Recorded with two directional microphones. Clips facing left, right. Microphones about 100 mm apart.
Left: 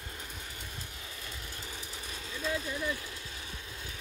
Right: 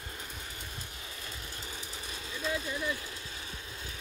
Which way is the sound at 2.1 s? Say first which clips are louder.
Even; 20° right (ahead or behind).